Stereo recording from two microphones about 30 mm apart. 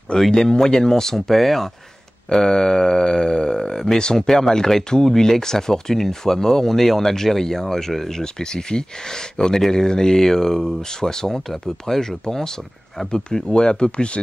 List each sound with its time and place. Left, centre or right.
0.2 s speech: centre
1.3 s speech: centre
2.3 s speech: left
13.1 s speech: left